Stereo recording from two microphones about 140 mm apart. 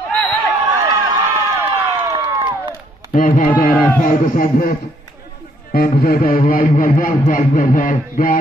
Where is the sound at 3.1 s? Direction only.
80° left.